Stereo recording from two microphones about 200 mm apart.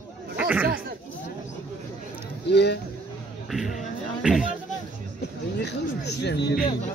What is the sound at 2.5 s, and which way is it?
Speech, 55° left (ahead or behind).